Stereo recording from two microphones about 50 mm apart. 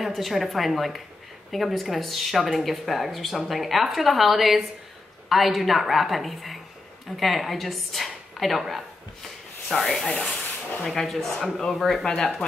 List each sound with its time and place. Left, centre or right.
0.0 s speech: centre
9.8 s speech: centre
10.0 s rub: left
10.9 s speech: centre